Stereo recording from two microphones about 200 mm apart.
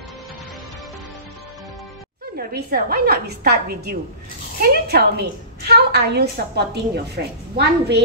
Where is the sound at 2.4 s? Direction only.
50° right (ahead or behind).